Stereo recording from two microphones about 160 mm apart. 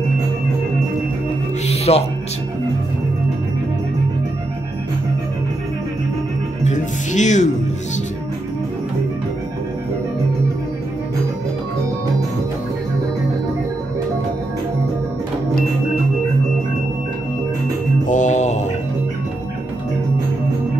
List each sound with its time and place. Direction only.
1.7 s music: 40° left (ahead or behind)
6.6 s music: 50° left (ahead or behind)
18.0 s music: 50° left (ahead or behind)